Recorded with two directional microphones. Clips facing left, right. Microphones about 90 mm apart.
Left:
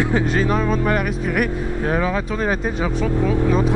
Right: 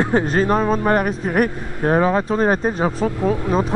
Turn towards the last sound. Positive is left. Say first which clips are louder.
# even
turn(degrees=-40)  # may be behind; listen again after turning